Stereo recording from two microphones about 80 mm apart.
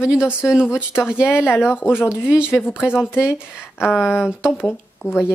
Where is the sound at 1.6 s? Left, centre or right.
Left.